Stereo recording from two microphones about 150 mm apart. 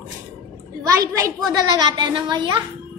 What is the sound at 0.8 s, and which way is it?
A woman's voice, 20° right (ahead or behind).